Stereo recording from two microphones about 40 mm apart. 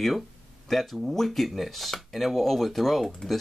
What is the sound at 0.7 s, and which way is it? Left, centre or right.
Speech, centre.